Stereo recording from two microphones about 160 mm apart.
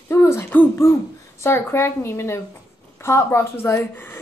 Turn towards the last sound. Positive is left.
turn(degrees=15)  # may be behind; listen again after turning